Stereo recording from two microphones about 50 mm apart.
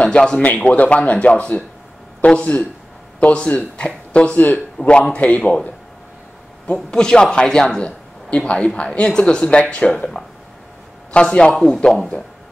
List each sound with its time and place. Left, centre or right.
0.0 s speech: left
5.1 s a man's voice: left
6.7 s speech: centre
11.1 s a man's voice: centre